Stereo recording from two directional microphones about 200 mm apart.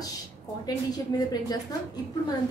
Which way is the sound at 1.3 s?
20° left (ahead or behind).